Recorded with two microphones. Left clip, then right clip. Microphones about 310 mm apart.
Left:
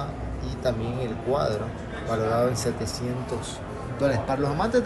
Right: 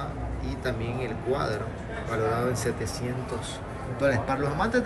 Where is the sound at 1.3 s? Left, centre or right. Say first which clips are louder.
Left 4 dB; centre.